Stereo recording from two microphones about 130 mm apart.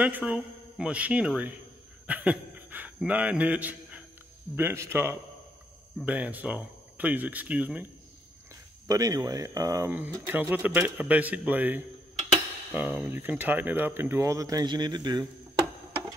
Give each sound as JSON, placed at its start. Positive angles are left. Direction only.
{"t": 0.0, "sound": "a man's voice", "side_deg": -10}
{"t": 8.8, "sound": "speech", "side_deg": -25}
{"t": 9.9, "sound": "speech", "side_deg": -15}